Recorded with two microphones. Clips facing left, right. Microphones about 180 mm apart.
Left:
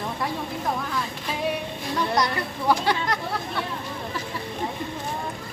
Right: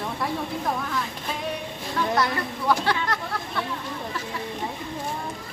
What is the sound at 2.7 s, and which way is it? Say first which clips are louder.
Speech: left 1 dB; 15° left (ahead or behind).